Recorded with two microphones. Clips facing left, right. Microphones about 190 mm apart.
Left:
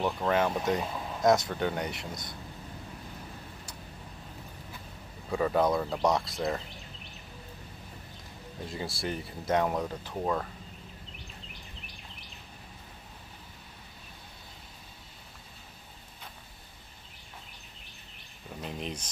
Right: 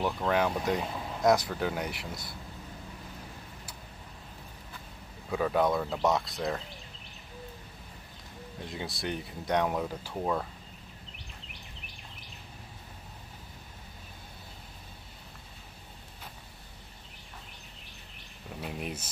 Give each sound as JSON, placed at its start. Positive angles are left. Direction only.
{"t": 0.0, "sound": "speech", "side_deg": 0}
{"t": 5.3, "sound": "speech", "side_deg": 0}
{"t": 8.6, "sound": "speech", "side_deg": 0}
{"t": 18.6, "sound": "a sound", "side_deg": -5}